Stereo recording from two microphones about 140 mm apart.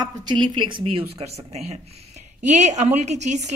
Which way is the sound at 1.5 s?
50° right (ahead or behind).